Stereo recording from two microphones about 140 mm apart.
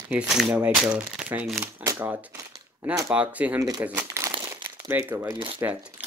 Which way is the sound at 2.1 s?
10° right (ahead or behind).